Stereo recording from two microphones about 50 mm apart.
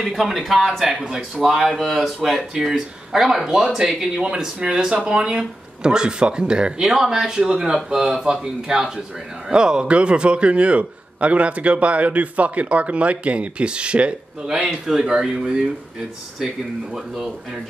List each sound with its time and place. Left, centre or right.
0.0 s speech: centre
0.9 s speech: centre
1.3 s a man's voice: centre
16.9 s speech: centre